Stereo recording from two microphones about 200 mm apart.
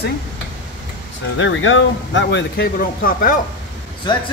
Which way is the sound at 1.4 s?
75° left (ahead or behind).